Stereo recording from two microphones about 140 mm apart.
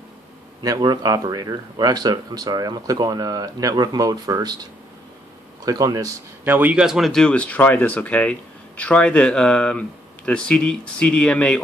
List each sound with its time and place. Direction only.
0.6 s speech: 30° right (ahead or behind)
5.7 s speech: 25° right (ahead or behind); by 11.6 s 5° left (ahead or behind)